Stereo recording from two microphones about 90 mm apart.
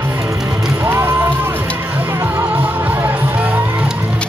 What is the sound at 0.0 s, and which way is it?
Music, 30° right (ahead or behind).